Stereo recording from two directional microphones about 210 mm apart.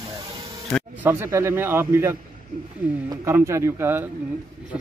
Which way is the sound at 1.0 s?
15° right (ahead or behind).